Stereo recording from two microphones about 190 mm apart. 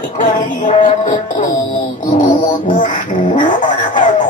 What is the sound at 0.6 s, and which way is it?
Music, 40° left (ahead or behind).